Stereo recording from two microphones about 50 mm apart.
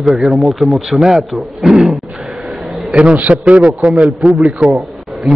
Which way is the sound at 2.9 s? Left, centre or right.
Right.